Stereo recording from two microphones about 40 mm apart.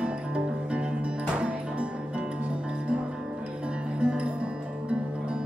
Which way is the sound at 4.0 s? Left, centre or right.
Right.